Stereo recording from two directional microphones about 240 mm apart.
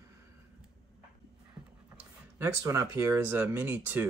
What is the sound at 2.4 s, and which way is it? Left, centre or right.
Speech, centre.